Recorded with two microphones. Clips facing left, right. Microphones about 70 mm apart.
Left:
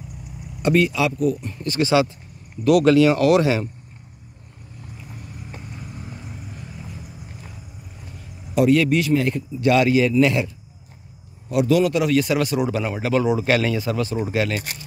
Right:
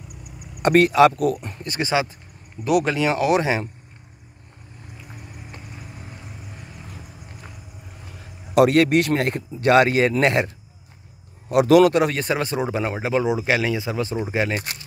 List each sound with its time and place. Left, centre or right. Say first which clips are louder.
0.6 s speech: right 4 dB; right
1.5 s speech: left 4 dB; right
8.5 s speech: right 2 dB; right
11.5 s speech: right 4 dB; right
12.0 s speech: left 2 dB; right